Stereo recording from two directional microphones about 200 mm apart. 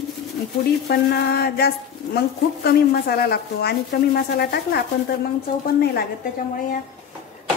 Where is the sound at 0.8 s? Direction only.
50° left (ahead or behind).